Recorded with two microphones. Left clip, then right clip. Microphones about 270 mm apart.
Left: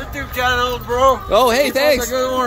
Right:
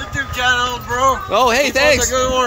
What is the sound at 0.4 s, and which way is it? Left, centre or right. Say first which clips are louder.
Speech: even; left.